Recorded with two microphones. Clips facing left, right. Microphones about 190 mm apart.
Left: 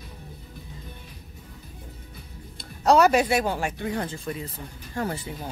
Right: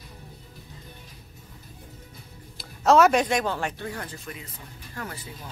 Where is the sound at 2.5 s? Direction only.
Centre (ahead or behind).